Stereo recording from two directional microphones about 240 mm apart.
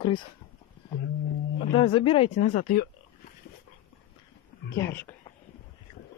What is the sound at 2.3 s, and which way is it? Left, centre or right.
Speech, left.